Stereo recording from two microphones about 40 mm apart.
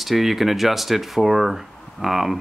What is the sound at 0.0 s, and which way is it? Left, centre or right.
Speech, centre.